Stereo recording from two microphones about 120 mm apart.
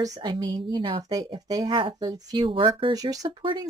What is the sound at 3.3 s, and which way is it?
Speech, 45° right (ahead or behind).